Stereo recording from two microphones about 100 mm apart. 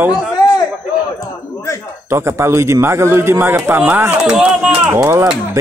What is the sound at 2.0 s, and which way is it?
A man's voice, 25° right (ahead or behind).